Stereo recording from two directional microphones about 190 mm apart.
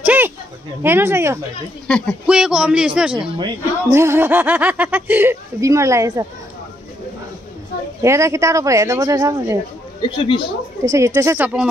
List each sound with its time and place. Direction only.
0.0 s a sound: 10° right (ahead or behind)
0.8 s speech: 10° right (ahead or behind)
1.9 s a man's voice: 5° left (ahead or behind)
3.3 s speech: 20° right (ahead or behind)
8.0 s speech: 15° right (ahead or behind)
10.0 s a woman's voice: 25° left (ahead or behind)
10.9 s speech: 15° right (ahead or behind)